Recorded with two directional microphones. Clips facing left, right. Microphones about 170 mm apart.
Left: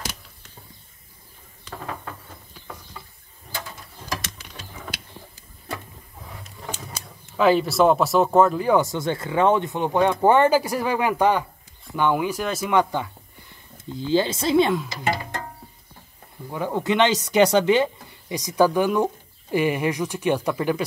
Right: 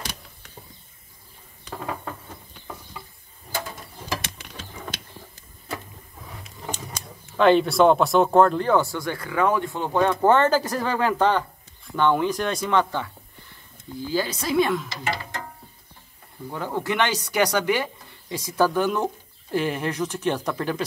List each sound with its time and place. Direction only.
6.7 s speech: 5° left (ahead or behind)
13.9 s speech: 25° left (ahead or behind)
16.4 s speech: 15° left (ahead or behind)